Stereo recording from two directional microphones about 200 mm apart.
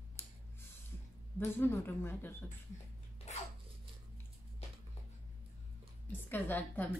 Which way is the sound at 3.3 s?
35° left (ahead or behind).